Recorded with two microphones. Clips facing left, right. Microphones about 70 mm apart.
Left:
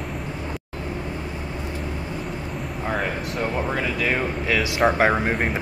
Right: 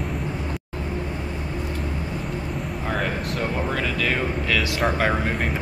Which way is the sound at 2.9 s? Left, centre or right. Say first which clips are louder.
Even; centre.